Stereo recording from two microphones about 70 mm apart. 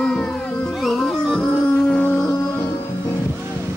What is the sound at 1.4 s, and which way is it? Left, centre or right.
Music, centre.